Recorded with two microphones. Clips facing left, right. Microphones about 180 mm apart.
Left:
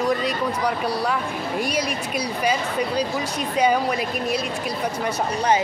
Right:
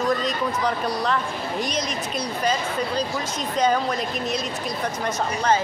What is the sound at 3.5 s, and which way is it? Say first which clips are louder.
Speech: left 1 dB; 10° left (ahead or behind).